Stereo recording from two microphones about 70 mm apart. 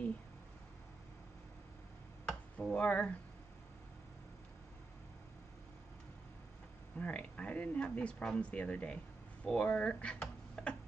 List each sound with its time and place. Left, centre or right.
2.2 s a sound: centre
7.0 s speech: centre
10.6 s tick-tock: centre